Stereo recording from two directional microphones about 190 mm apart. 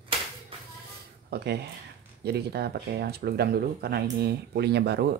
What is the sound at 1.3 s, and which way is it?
Speech, 60° right (ahead or behind).